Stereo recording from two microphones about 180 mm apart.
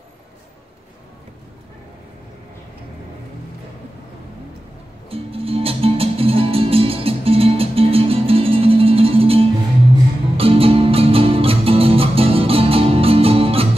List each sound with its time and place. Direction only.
5.1 s music: 30° right (ahead or behind)